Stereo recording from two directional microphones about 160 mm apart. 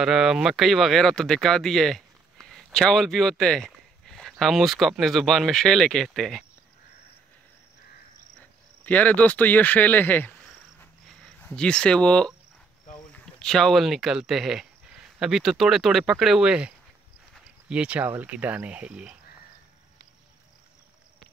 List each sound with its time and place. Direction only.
0.0 s speech: 5° right (ahead or behind)
8.4 s speech: 10° left (ahead or behind); by 19.1 s 10° right (ahead or behind)